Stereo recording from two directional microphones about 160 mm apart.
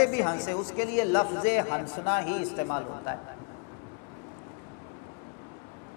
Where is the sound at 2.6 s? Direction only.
30° left (ahead or behind).